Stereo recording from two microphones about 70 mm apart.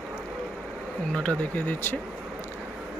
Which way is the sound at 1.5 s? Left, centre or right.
Left.